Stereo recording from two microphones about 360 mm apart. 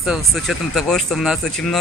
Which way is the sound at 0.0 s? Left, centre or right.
Centre.